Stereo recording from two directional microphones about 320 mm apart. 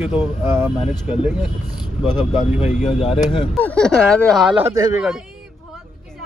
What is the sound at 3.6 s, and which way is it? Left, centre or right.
Speech, centre.